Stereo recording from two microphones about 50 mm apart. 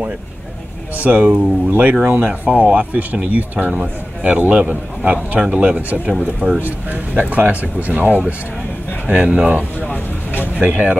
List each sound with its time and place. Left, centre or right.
1.0 s speech: right
10.7 s speech: right